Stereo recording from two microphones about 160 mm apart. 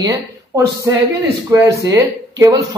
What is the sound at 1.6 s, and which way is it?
Speech, 20° right (ahead or behind).